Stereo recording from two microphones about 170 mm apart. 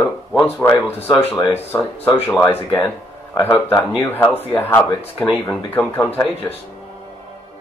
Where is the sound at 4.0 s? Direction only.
10° left (ahead or behind).